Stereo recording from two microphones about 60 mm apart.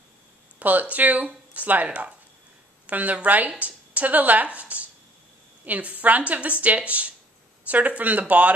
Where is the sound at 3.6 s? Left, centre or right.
Right.